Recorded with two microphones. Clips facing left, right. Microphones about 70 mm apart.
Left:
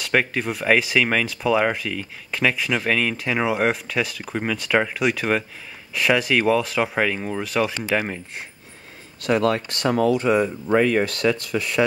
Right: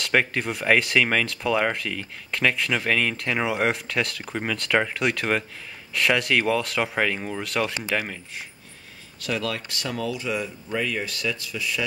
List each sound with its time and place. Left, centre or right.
0.0 s speech: centre
9.2 s speech: left